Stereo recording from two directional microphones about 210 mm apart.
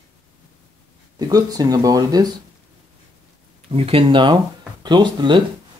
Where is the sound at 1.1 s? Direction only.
15° right (ahead or behind).